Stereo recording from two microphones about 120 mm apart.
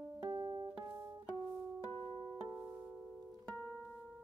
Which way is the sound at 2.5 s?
15° right (ahead or behind).